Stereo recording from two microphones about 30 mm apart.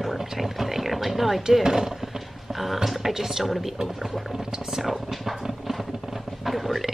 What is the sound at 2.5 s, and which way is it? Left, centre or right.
Speech, centre.